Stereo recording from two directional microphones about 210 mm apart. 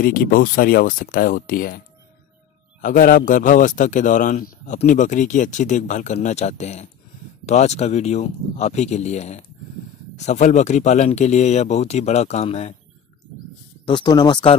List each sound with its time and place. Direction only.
0.0 s speech: 45° left (ahead or behind)
2.8 s a man's voice: 40° left (ahead or behind)
13.8 s speech: 20° left (ahead or behind)